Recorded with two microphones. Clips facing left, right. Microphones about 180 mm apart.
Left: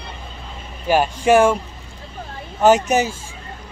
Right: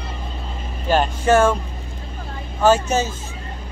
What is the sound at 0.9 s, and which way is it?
Speech, 10° left (ahead or behind).